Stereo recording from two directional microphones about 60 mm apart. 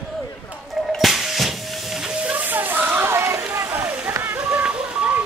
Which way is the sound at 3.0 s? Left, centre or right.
Right.